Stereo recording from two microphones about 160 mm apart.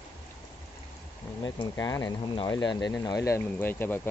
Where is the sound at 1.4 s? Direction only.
25° left (ahead or behind).